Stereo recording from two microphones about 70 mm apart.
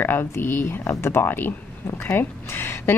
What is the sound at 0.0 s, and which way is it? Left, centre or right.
A woman's voice, left.